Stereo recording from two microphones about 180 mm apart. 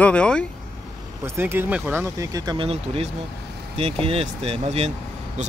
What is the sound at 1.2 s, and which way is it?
Speech, 15° right (ahead or behind).